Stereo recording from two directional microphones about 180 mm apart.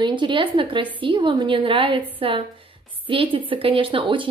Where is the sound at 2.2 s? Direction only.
30° right (ahead or behind).